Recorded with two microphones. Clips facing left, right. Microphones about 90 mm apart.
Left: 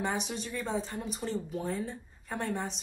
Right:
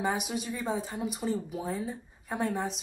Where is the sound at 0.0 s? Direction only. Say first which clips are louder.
Right 3 dB; 5° right (ahead or behind).